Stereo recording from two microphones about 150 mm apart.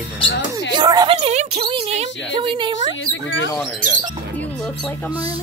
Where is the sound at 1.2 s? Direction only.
45° right (ahead or behind).